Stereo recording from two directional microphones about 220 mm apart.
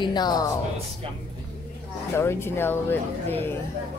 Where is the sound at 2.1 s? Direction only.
10° left (ahead or behind).